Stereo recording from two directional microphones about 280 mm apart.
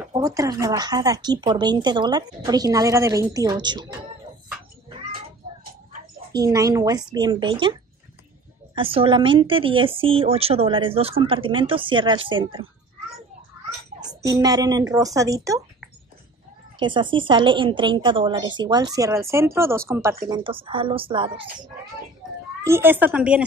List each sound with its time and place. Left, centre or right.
0.1 s speech: centre
6.3 s speech: centre
8.7 s speech: centre
14.0 s speech: centre
16.8 s speech: centre
22.6 s speech: centre